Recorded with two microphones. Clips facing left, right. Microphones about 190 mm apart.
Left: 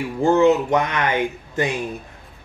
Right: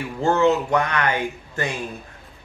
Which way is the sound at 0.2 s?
15° left (ahead or behind).